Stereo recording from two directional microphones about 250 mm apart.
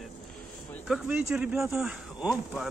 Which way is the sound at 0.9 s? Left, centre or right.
Centre.